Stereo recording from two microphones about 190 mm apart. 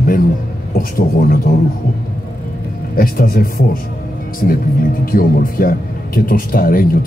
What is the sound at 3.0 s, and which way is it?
Speech, 50° left (ahead or behind).